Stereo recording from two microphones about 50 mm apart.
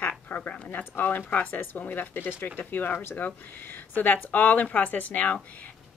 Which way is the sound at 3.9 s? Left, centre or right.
Left.